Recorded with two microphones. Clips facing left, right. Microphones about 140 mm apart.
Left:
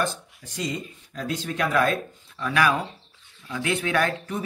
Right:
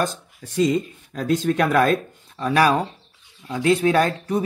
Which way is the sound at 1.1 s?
45° right (ahead or behind).